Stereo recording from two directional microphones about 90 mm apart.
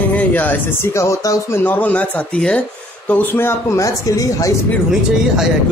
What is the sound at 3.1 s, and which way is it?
A man's voice, 20° left (ahead or behind).